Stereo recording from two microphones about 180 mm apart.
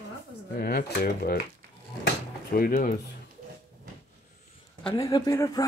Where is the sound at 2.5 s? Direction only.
50° left (ahead or behind).